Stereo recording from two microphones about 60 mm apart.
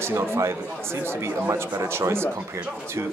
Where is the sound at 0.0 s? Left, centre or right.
Right.